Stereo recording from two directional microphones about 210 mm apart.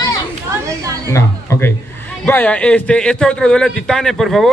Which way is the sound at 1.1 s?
15° left (ahead or behind).